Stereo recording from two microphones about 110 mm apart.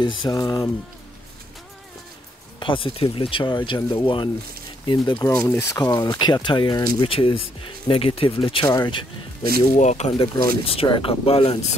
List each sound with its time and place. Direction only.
0.0 s speech: 45° left (ahead or behind)
2.6 s speech: 50° left (ahead or behind)
5.5 s speech: 25° left (ahead or behind)
6.1 s speech: 45° left (ahead or behind)
8.6 s speech: 30° left (ahead or behind)
9.8 s speech: 90° left
10.1 s speech: 50° left (ahead or behind)